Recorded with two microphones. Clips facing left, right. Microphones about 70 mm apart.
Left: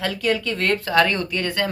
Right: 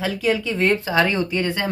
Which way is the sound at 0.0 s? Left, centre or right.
Centre.